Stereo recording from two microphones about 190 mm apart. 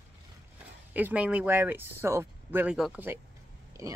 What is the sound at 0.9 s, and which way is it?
Speech, 10° right (ahead or behind).